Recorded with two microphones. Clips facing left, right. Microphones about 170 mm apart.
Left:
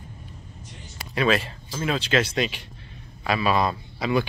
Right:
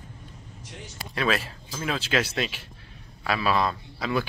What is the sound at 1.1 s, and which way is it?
A man's voice, centre (ahead or behind).